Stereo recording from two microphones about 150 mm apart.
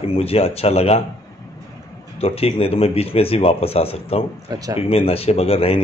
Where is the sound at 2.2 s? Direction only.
40° left (ahead or behind).